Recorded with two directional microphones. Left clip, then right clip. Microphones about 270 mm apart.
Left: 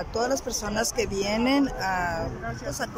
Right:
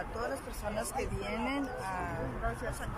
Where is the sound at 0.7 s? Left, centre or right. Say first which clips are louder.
Left 11 dB; left.